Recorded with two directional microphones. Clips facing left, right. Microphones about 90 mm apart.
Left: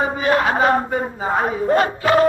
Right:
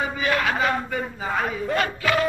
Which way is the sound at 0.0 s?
35° left (ahead or behind).